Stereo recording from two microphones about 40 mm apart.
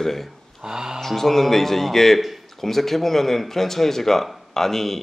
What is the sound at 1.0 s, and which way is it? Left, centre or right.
A man's voice, centre.